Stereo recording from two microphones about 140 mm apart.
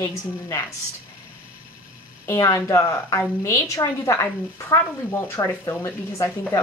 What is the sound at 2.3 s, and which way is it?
A woman's voice, 20° left (ahead or behind).